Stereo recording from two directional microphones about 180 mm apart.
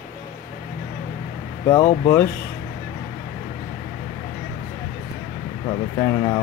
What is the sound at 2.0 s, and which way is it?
Speech, 15° left (ahead or behind).